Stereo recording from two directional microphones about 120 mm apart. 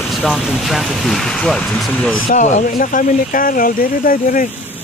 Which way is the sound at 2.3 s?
90° left.